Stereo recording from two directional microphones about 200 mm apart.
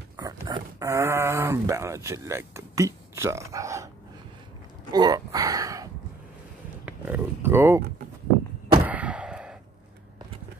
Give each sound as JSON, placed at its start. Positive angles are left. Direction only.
{"t": 0.2, "sound": "speech", "side_deg": -20}
{"t": 4.9, "sound": "speech", "side_deg": -20}
{"t": 6.9, "sound": "speech", "side_deg": -10}
{"t": 8.8, "sound": "a sound", "side_deg": -5}